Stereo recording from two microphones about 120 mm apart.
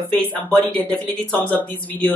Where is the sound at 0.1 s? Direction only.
15° left (ahead or behind).